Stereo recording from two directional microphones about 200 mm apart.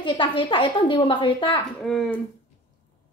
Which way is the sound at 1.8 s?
Centre (ahead or behind).